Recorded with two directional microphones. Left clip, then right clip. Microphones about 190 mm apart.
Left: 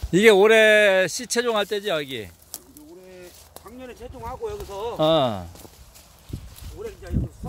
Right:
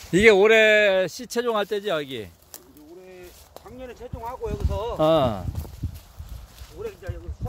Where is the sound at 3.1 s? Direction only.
55° left (ahead or behind).